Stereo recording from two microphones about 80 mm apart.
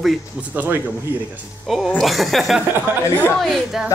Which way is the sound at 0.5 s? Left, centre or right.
Right.